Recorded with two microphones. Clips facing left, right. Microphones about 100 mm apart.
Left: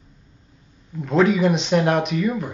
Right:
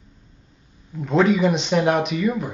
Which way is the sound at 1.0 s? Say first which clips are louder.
Even; centre (ahead or behind).